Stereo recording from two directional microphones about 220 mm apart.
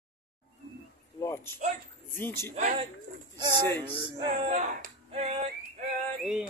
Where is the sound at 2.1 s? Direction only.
10° left (ahead or behind).